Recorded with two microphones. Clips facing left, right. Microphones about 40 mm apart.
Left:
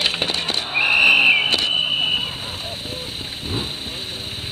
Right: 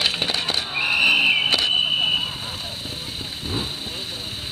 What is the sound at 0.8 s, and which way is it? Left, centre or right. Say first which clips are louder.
Vehicle: left 4 dB; left.